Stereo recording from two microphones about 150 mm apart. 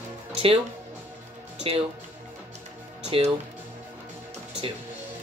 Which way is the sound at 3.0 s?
45° right (ahead or behind).